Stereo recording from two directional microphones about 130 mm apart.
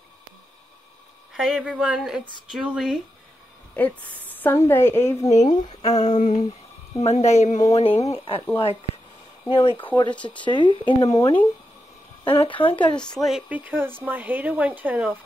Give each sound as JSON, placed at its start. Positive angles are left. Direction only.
{"t": 1.3, "sound": "speech", "side_deg": -5}
{"t": 3.7, "sound": "a woman's voice", "side_deg": 15}
{"t": 5.9, "sound": "speech", "side_deg": 65}
{"t": 9.5, "sound": "speech", "side_deg": 45}
{"t": 12.3, "sound": "speech", "side_deg": 40}
{"t": 12.9, "sound": "speech", "side_deg": 5}
{"t": 13.5, "sound": "speech", "side_deg": -15}